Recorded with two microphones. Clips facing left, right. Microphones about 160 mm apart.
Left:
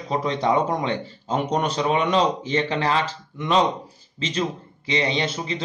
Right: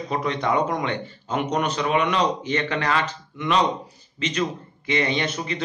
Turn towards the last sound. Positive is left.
turn(degrees=25)  # may be behind; listen again after turning